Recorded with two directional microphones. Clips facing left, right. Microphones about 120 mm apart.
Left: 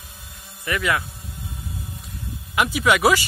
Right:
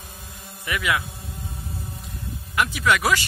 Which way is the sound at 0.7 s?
5° right (ahead or behind).